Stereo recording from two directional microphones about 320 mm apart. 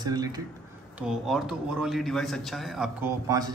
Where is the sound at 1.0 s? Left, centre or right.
Centre.